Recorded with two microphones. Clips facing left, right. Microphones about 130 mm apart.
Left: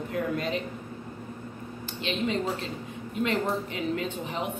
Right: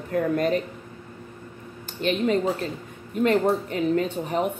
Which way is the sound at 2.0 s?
45° right (ahead or behind).